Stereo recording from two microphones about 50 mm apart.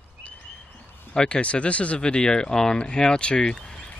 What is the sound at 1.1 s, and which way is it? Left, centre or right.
Speech, centre.